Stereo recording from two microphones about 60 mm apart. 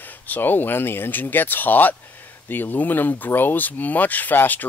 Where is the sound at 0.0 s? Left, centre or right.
Left.